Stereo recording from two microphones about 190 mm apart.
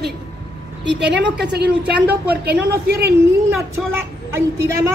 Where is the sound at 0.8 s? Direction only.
65° right (ahead or behind).